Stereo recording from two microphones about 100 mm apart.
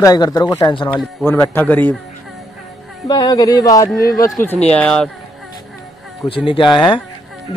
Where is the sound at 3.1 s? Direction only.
40° left (ahead or behind).